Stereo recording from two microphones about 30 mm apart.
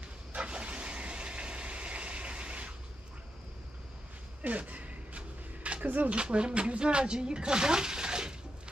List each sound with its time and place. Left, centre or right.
0.4 s vehicle: right
4.4 s a sound: right
5.9 s speech: right
6.1 s speech: right